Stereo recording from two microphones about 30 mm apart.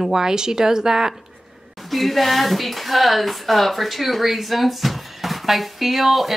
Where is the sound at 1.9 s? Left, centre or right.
Centre.